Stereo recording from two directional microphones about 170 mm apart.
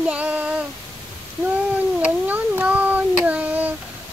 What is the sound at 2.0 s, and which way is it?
Child singing, 10° right (ahead or behind).